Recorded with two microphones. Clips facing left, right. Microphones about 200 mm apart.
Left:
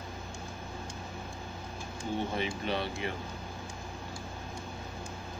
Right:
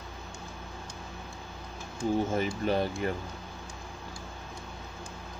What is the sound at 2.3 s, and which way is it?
Speech, 45° right (ahead or behind).